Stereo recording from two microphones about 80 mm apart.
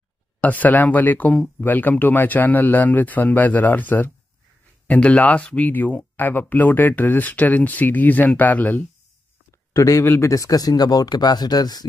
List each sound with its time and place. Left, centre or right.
0.4 s speech: centre
9.8 s speech: left
10.3 s speech: left